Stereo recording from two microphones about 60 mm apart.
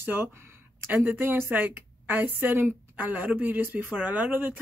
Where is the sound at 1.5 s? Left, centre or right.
Right.